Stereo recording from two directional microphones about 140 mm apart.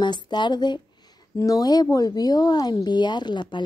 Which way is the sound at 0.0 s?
30° left (ahead or behind).